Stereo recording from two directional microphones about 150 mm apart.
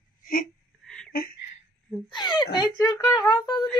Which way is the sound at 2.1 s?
30° left (ahead or behind).